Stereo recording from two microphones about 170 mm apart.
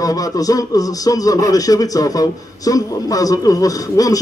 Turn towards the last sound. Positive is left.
turn(degrees=20)  # may be behind; listen again after turning